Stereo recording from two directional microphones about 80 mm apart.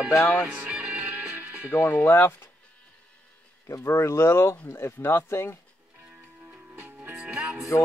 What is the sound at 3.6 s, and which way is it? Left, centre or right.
Speech, left.